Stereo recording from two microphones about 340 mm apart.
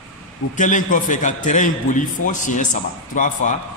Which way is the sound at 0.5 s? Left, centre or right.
Left.